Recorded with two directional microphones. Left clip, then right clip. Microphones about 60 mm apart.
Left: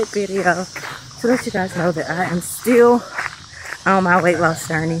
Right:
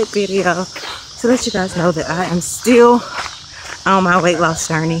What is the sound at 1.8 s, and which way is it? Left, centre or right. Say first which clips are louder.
Speech: right 3 dB; centre.